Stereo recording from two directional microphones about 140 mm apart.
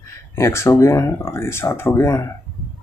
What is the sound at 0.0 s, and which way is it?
Speech, 20° left (ahead or behind).